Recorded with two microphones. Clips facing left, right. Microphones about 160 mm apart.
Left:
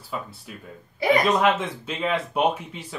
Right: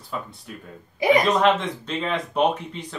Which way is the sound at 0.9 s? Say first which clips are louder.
Right 2 dB; 15° right (ahead or behind).